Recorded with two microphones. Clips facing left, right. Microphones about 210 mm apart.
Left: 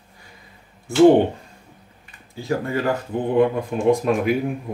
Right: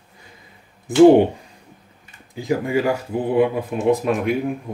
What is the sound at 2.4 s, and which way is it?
Speech, 15° right (ahead or behind).